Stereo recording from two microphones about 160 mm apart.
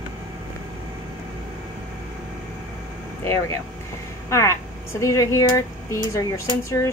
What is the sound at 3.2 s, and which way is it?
Speech, 15° left (ahead or behind).